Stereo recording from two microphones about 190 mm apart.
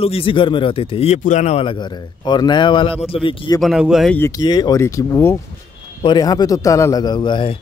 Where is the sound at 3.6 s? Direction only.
Centre (ahead or behind).